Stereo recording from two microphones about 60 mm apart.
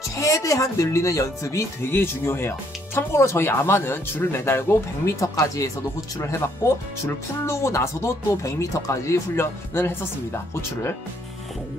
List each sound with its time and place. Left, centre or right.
0.1 s speech: left
1.8 s speech: left
6.6 s speech: left